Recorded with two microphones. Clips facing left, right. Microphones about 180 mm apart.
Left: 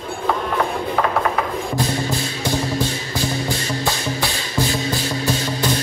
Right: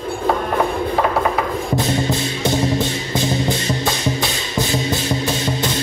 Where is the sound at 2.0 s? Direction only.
20° right (ahead or behind).